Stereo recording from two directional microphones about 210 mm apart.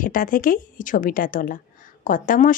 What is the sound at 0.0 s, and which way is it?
Speech, 40° left (ahead or behind).